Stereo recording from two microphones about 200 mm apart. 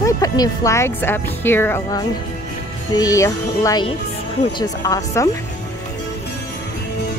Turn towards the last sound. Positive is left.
turn(degrees=15)  # may be behind; listen again after turning